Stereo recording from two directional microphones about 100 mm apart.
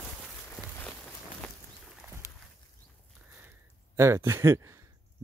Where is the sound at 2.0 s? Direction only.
15° right (ahead or behind).